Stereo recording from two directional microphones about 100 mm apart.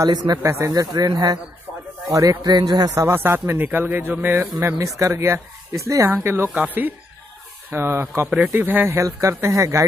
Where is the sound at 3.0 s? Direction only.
20° right (ahead or behind).